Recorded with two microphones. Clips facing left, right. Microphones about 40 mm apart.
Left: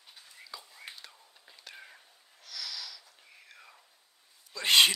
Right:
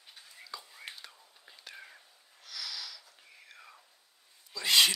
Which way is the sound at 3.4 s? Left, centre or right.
Centre.